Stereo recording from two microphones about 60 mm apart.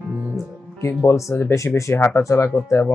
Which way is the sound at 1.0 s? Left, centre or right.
Left.